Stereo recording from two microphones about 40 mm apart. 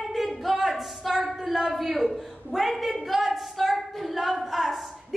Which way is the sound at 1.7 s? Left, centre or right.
Centre.